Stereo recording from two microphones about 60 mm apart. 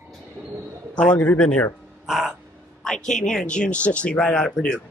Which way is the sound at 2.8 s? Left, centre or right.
Centre.